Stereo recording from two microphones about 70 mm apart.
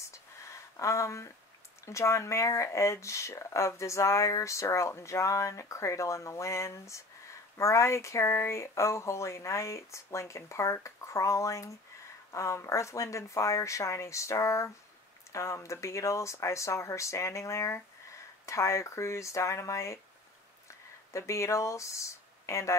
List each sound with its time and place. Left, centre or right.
0.7 s speech: left
21.1 s speech: left